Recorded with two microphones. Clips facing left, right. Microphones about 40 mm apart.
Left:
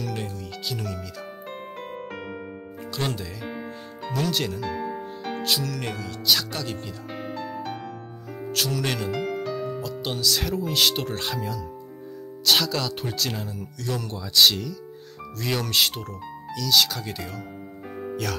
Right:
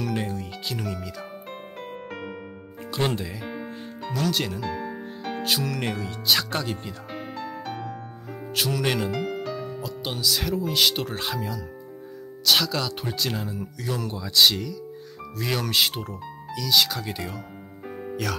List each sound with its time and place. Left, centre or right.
0.0 s speech: centre
0.3 s music: right
0.7 s music: centre
2.9 s speech: centre
3.4 s music: centre
5.4 s music: centre
6.6 s speech: centre
7.1 s music: centre
8.3 s speech: centre
17.8 s music: centre